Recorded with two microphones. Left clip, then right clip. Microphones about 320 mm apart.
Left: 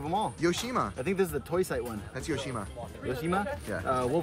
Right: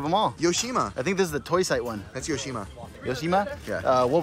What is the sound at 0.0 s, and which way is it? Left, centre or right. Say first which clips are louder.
Speech: right 7 dB; right.